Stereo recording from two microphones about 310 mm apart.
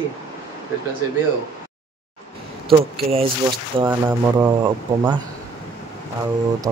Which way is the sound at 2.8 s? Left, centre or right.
Centre.